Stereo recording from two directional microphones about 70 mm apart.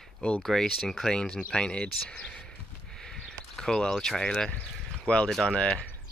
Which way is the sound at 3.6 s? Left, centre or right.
Centre.